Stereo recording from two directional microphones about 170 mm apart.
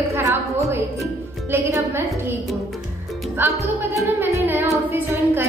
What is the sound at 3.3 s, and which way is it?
A woman's voice, 15° right (ahead or behind).